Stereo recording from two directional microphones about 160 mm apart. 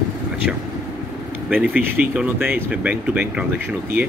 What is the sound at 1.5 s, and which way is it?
Speech, 10° right (ahead or behind).